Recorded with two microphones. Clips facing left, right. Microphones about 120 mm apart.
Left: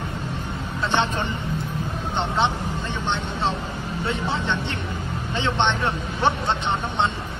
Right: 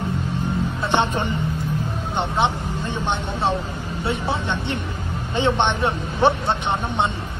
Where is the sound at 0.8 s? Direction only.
15° right (ahead or behind).